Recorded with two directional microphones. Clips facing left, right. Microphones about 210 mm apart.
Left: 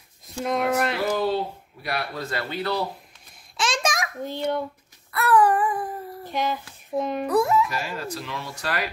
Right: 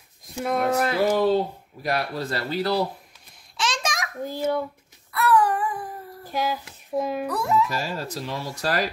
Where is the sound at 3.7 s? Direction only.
55° left (ahead or behind).